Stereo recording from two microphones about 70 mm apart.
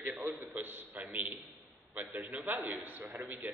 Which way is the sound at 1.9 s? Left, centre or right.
Right.